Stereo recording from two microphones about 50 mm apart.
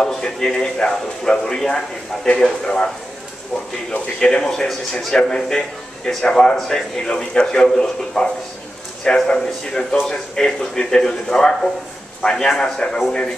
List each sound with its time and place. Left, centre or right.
0.0 s a man's voice: centre
4.0 s a man's voice: centre